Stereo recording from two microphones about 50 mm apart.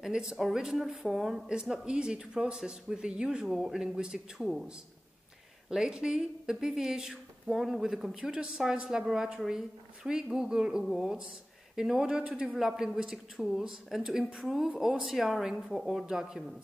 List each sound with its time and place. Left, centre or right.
0.0 s speech: centre
1.5 s speech: centre
4.4 s speech: centre
5.7 s a man's voice: centre
12.5 s speech: centre